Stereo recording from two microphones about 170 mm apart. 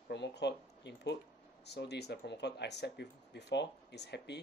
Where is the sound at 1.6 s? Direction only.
80° left.